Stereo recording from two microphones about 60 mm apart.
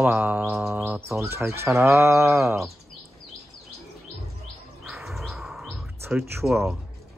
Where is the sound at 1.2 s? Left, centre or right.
Right.